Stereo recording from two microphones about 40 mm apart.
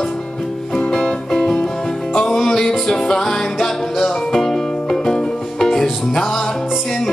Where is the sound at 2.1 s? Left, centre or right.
Centre.